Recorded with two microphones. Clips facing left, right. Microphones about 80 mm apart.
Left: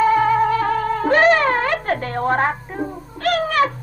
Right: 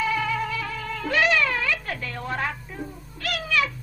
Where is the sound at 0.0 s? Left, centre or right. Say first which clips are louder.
Left 11 dB; left.